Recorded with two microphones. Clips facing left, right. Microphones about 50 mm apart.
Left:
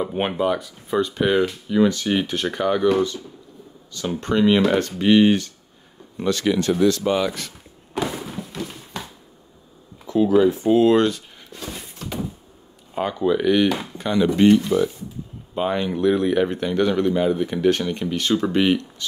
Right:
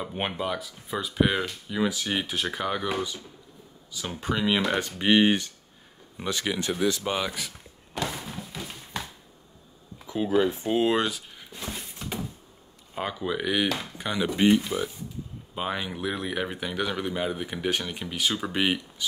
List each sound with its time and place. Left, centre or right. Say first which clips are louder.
0.0 s speech: left 8 dB; centre
4.2 s speech: left 8 dB; centre
4.7 s speech: left 6 dB; centre
7.9 s a sound: left 6 dB; centre
10.7 s speech: left 10 dB; centre
12.9 s speech: left 9 dB; centre